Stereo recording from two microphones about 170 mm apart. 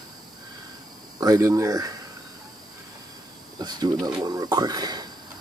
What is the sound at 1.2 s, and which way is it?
Speech, 20° right (ahead or behind).